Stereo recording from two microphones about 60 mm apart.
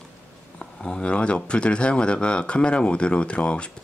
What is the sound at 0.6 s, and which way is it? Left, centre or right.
Speech, centre.